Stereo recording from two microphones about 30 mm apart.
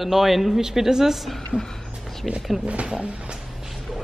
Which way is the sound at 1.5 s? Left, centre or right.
Right.